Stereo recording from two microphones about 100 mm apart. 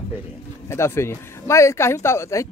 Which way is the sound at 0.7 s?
25° left (ahead or behind).